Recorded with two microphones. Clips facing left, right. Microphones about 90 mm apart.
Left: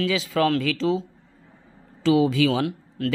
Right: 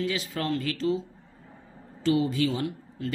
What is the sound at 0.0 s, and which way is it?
Speech, 90° left.